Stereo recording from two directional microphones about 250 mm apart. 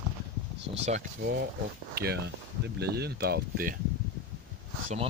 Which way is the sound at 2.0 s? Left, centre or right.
Right.